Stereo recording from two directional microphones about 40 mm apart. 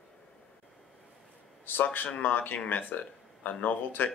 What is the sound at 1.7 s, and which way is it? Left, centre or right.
A man's voice, left.